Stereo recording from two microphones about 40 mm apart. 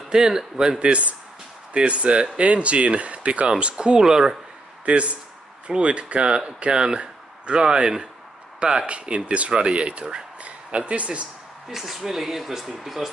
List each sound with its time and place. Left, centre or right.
0.1 s speech: centre
0.7 s speech: right
4.8 s speech: right
11.7 s speech: centre